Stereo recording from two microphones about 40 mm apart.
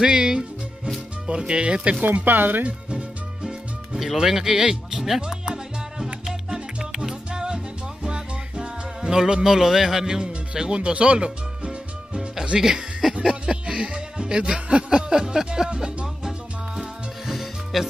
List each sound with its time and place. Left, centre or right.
0.0 s music: centre
1.2 s speech: right
2.2 s speech: right
4.0 s speech: centre
5.2 s salsa music: centre
10.2 s music: right
12.5 s music: centre
13.1 s music: right
17.3 s music: centre